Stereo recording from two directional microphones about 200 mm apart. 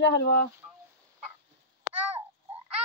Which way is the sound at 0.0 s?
60° left (ahead or behind).